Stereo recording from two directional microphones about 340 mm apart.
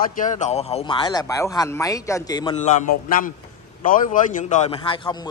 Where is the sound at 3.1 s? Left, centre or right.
Left.